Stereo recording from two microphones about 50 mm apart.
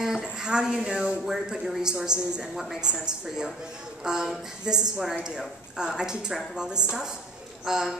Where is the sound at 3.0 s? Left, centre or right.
Centre.